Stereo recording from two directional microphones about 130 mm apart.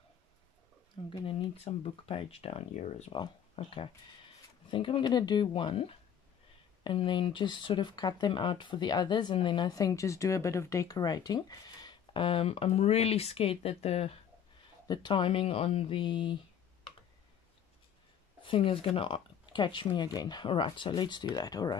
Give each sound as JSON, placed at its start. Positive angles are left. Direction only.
{"t": 1.0, "sound": "speech", "side_deg": 50}
{"t": 3.1, "sound": "speech", "side_deg": 40}
{"t": 14.9, "sound": "speech", "side_deg": 35}
{"t": 18.4, "sound": "speech", "side_deg": 45}